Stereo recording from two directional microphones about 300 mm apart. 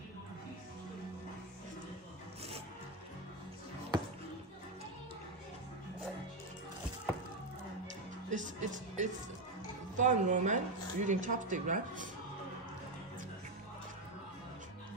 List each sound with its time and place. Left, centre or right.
8.3 s speech: right